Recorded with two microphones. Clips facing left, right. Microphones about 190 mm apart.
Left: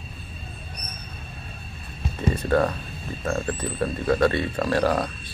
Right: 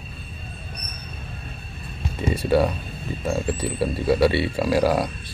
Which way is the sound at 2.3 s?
10° right (ahead or behind).